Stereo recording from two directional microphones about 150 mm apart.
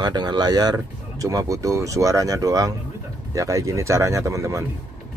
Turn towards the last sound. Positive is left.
turn(degrees=-20)  # may be behind; listen again after turning